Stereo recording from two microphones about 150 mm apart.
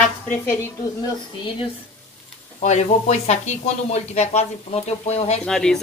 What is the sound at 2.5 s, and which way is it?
Speech, 50° left (ahead or behind).